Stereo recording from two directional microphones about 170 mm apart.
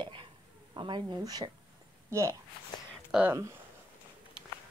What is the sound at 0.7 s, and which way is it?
Speech, 25° right (ahead or behind).